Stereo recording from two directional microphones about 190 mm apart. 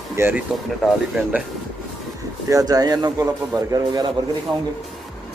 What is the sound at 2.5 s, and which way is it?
Speech, 20° right (ahead or behind).